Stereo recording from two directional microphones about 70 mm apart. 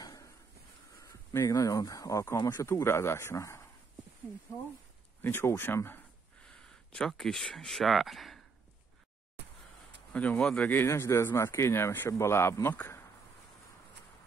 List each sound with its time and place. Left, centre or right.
0.0 s a sound: left
1.6 s speech: left
2.7 s speech: left
5.2 s speech: left
6.4 s speech: centre
10.1 s speech: left
10.9 s speech: left